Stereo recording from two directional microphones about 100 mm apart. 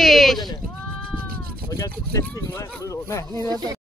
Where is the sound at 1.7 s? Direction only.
35° left (ahead or behind).